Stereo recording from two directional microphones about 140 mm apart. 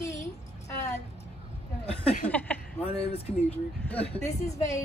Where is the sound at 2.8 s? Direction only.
45° left (ahead or behind).